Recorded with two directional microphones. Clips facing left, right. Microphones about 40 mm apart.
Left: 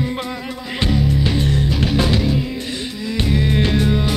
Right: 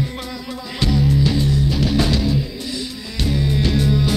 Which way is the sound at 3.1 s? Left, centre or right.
Left.